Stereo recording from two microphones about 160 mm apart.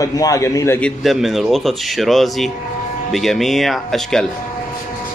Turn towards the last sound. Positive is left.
turn(degrees=5)  # may be behind; listen again after turning